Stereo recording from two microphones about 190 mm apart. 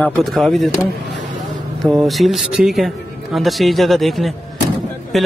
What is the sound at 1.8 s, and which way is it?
Speech, centre (ahead or behind).